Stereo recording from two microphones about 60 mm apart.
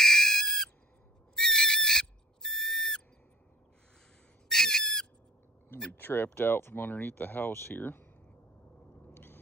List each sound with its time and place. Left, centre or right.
0.0 s owl: centre
4.5 s bird: centre
5.9 s speech: left
9.1 s a sound: left